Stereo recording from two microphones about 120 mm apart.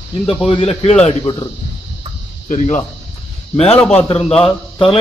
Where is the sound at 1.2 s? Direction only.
35° left (ahead or behind).